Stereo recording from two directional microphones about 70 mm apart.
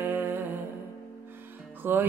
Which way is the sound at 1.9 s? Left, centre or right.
Right.